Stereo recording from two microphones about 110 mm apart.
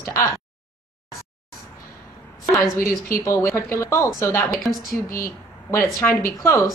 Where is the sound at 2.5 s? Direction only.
Centre (ahead or behind).